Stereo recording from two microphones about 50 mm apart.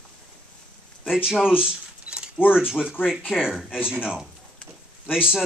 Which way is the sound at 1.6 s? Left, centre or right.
Centre.